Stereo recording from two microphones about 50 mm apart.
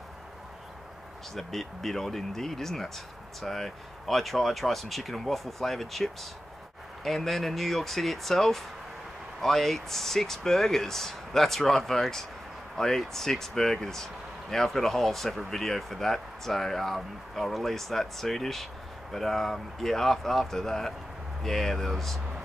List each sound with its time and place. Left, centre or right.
1.3 s speech: centre
7.1 s speech: centre